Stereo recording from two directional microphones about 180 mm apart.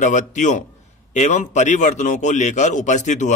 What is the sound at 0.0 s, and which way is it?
A man's voice, 45° left (ahead or behind).